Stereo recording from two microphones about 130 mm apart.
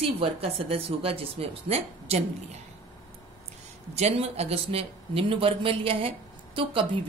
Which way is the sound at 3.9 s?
55° right (ahead or behind).